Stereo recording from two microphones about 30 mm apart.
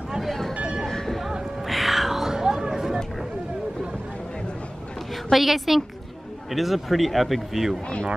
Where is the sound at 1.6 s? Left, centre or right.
Centre; by 3.0 s right.